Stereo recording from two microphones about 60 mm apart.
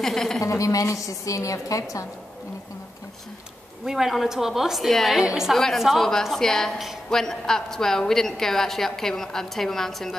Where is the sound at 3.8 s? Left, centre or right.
Centre.